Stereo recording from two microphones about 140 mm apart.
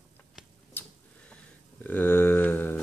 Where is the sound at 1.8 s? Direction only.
15° left (ahead or behind).